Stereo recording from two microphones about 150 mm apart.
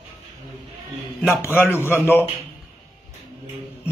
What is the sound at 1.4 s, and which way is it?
Speech, 15° left (ahead or behind).